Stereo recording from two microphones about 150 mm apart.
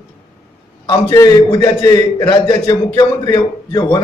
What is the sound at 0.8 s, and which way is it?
A man's voice, 30° left (ahead or behind).